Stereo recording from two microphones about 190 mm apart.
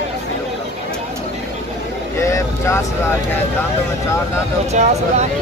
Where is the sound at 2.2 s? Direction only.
15° left (ahead or behind).